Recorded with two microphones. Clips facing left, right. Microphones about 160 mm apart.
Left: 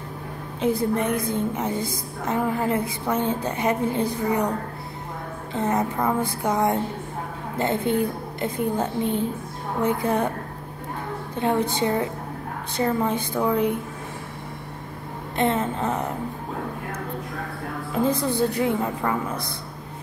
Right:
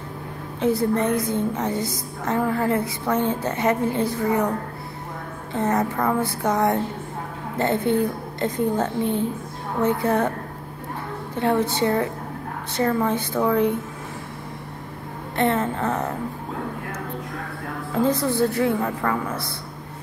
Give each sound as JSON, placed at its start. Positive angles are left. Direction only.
{"t": 0.6, "sound": "a woman's voice", "side_deg": 15}
{"t": 5.5, "sound": "a woman's voice", "side_deg": 15}
{"t": 11.3, "sound": "a woman's voice", "side_deg": 15}
{"t": 15.3, "sound": "a woman's voice", "side_deg": 15}
{"t": 17.9, "sound": "a woman's voice", "side_deg": 15}